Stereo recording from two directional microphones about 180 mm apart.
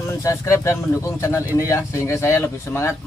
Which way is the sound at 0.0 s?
15° left (ahead or behind).